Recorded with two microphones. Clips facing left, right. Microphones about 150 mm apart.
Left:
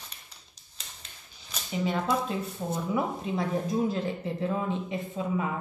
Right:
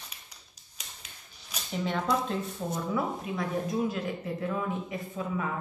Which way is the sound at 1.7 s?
5° left (ahead or behind).